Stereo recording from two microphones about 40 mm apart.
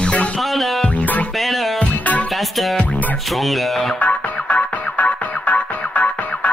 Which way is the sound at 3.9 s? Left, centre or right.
Left.